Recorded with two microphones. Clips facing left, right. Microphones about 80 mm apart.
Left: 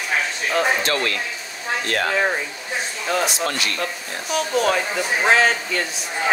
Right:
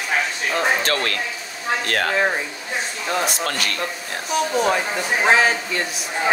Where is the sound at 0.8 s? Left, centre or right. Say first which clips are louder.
Even; right.